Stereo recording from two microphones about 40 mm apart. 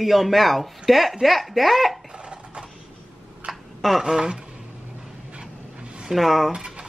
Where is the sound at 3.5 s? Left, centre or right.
Centre.